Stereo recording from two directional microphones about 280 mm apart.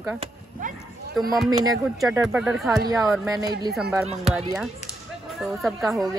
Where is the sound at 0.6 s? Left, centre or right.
Right.